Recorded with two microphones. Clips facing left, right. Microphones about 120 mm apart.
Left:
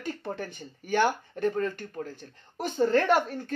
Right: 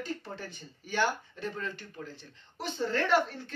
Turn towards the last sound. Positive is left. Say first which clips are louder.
# left 3 dB
turn(degrees=45)  # may be behind; listen again after turning